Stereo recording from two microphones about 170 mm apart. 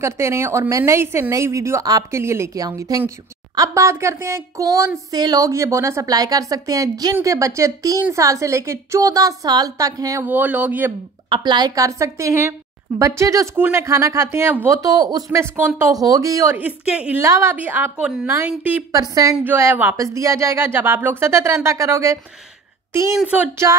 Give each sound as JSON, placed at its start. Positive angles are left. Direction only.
{"t": 0.0, "sound": "speech", "side_deg": -15}
{"t": 11.2, "sound": "speech", "side_deg": -30}
{"t": 18.9, "sound": "speech", "side_deg": -20}